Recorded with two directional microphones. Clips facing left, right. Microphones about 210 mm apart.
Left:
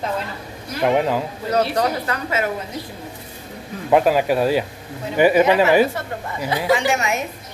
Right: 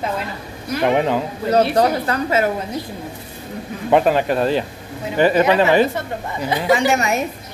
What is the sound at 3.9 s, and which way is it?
Speech, 5° left (ahead or behind).